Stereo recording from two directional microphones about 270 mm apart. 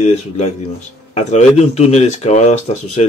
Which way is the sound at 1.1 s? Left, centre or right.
Left.